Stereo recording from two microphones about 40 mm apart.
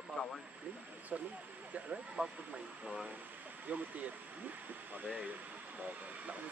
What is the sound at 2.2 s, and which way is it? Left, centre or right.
Speech, right.